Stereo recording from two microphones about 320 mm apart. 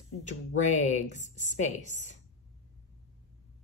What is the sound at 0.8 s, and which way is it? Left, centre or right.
A woman's voice, left.